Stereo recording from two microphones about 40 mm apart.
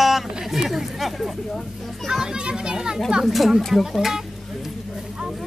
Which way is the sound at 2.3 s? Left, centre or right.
Right.